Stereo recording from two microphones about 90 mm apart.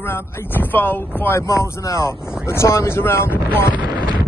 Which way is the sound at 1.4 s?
35° left (ahead or behind).